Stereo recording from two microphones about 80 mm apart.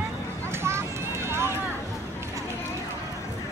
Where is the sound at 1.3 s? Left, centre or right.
Right.